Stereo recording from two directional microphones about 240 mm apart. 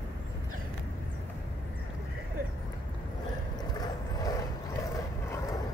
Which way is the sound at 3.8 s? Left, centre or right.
Centre.